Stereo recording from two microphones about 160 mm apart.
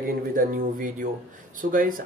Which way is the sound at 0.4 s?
60° right (ahead or behind).